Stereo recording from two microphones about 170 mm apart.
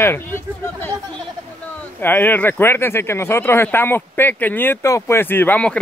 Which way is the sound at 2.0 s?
10° left (ahead or behind).